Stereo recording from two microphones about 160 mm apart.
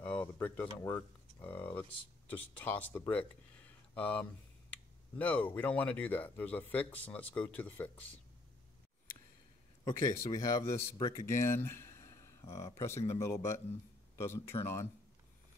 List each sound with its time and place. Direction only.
0.0 s speech: 10° left (ahead or behind)
9.8 s speech: 20° left (ahead or behind)